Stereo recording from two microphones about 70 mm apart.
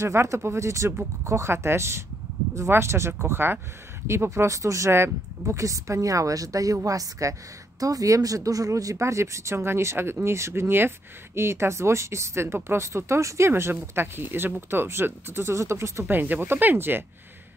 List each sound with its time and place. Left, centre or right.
0.0 s speech: right
16.1 s speech: right